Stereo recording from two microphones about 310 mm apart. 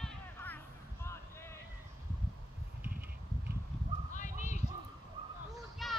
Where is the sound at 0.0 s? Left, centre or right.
Centre.